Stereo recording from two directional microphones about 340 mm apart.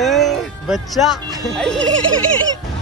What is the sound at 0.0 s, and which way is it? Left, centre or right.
Music, centre.